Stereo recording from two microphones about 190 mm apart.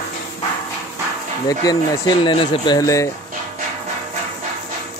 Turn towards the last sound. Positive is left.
turn(degrees=15)  # may be behind; listen again after turning